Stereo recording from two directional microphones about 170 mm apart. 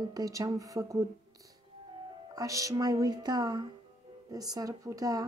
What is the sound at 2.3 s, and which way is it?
Speech, 20° right (ahead or behind).